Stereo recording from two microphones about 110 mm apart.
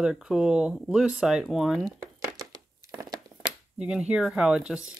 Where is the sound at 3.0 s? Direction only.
40° right (ahead or behind).